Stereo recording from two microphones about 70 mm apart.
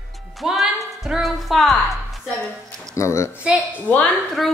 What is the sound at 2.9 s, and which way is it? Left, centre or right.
Speech, left.